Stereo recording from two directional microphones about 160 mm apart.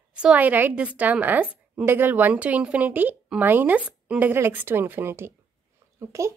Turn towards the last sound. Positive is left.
turn(degrees=-20)  # may be behind; listen again after turning